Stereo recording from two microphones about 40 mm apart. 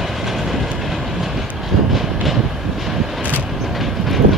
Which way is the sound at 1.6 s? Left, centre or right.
Centre.